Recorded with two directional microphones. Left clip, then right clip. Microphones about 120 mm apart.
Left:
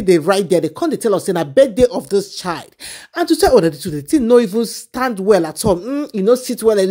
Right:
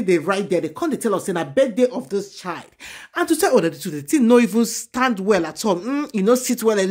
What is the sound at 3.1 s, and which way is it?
Speech, 30° left (ahead or behind).